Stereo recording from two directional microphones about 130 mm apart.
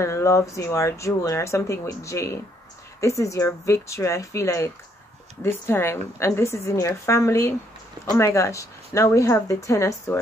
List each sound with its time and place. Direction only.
0.0 s speech: 20° left (ahead or behind)